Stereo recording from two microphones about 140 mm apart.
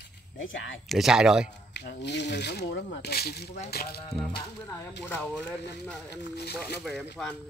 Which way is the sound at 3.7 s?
90° left.